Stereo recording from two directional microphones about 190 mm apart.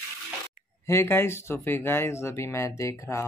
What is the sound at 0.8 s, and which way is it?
Speech, 15° left (ahead or behind).